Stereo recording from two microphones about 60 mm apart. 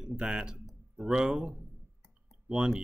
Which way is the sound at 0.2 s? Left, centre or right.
Centre.